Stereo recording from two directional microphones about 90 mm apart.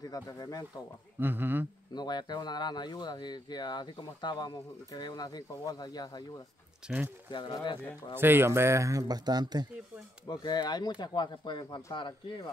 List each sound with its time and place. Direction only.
0.0 s speech: 45° left (ahead or behind)
1.2 s speech: 20° right (ahead or behind)
2.0 s speech: 50° left (ahead or behind)
6.8 s speech: 10° right (ahead or behind)
7.2 s speech: 60° left (ahead or behind)
8.2 s speech: 25° right (ahead or behind); by 9.7 s 50° right (ahead or behind)
10.2 s speech: 50° left (ahead or behind)